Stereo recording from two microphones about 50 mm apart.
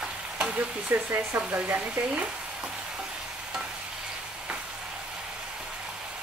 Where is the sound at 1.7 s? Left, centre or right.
Right.